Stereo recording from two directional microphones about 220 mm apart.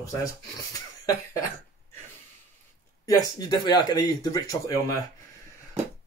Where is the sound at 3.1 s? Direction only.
15° left (ahead or behind).